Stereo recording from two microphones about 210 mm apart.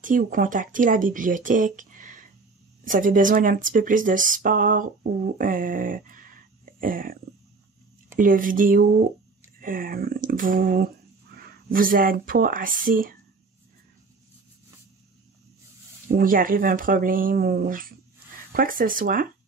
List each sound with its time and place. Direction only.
0.0 s speech: 40° right (ahead or behind)
8.2 s speech: 40° right (ahead or behind)
16.2 s speech: 40° right (ahead or behind)